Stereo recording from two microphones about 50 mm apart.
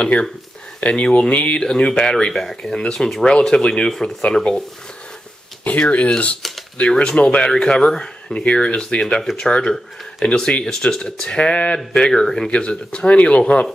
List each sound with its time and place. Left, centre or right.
0.0 s speech: left; by 3.3 s centre
3.3 s speech: centre
5.6 s speech: left; by 12.4 s centre
12.4 s speech: left